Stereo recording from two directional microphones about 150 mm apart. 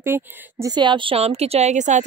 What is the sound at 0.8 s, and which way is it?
Speech, 35° right (ahead or behind).